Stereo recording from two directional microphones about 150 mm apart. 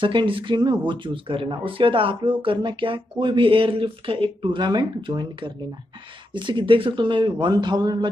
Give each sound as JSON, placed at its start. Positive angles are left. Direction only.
{"t": 0.0, "sound": "speech", "side_deg": -35}